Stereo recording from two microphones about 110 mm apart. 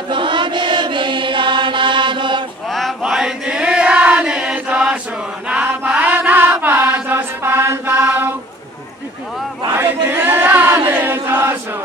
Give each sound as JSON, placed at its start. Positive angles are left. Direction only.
{"t": 0.1, "sound": "chant", "side_deg": -50}
{"t": 2.7, "sound": "chant", "side_deg": 0}
{"t": 7.9, "sound": "mantra", "side_deg": -10}
{"t": 10.0, "sound": "a sound", "side_deg": -20}
{"t": 10.9, "sound": "chant", "side_deg": -20}